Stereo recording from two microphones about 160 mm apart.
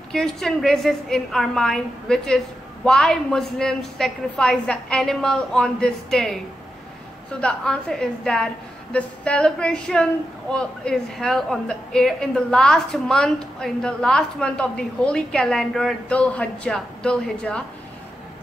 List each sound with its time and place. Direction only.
0.1 s a woman's voice: centre (ahead or behind)